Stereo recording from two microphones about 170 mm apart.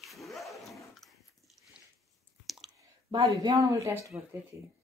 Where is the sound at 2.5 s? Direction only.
Centre (ahead or behind).